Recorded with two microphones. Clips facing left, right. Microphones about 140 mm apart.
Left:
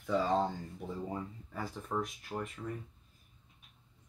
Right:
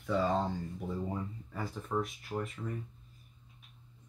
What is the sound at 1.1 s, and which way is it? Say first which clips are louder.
Speech: right 1 dB; centre (ahead or behind).